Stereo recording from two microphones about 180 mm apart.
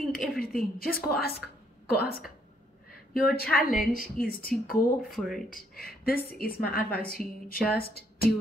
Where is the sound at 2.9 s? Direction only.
55° left (ahead or behind).